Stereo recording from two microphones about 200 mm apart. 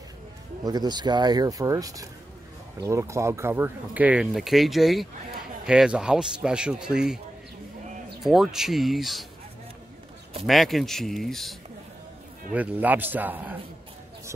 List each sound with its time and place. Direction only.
0.7 s a man's voice: 20° right (ahead or behind); by 7.2 s 5° right (ahead or behind)
8.2 s a man's voice: centre (ahead or behind)
10.4 s a man's voice: centre (ahead or behind)
12.5 s speech: 10° right (ahead or behind)